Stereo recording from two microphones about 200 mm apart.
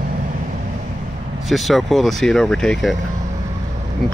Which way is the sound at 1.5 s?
Centre (ahead or behind).